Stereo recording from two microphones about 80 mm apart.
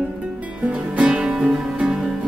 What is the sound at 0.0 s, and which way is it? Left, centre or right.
Music, centre.